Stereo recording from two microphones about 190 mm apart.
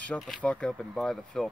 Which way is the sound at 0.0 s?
5° left (ahead or behind).